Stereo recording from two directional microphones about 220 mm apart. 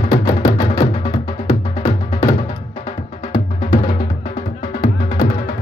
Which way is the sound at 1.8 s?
15° left (ahead or behind).